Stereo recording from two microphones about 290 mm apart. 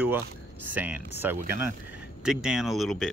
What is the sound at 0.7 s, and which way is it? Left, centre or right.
Rub, centre.